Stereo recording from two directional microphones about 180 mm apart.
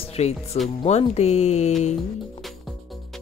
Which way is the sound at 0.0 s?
35° left (ahead or behind).